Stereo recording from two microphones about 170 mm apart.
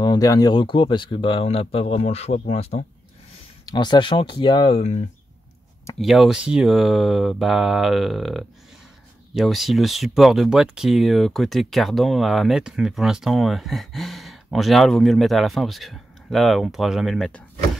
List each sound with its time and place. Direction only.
0.0 s speech: 25° left (ahead or behind); by 2.8 s 40° left (ahead or behind)
3.6 s speech: 25° left (ahead or behind)
5.9 s speech: centre (ahead or behind)